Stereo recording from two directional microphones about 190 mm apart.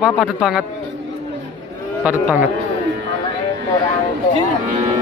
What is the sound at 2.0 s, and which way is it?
Speech, 10° right (ahead or behind).